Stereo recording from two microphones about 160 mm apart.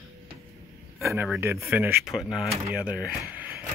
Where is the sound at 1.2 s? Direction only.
Centre (ahead or behind).